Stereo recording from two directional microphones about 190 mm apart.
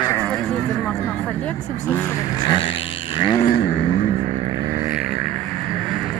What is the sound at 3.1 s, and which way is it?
Vehicle, 25° left (ahead or behind).